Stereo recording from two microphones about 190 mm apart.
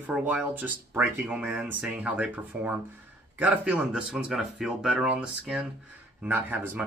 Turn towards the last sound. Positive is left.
turn(degrees=-10)  # may be behind; listen again after turning